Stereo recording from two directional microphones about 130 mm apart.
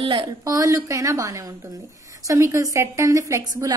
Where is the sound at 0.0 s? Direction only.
40° right (ahead or behind).